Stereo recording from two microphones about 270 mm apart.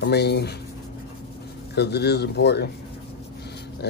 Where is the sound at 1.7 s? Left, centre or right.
Left.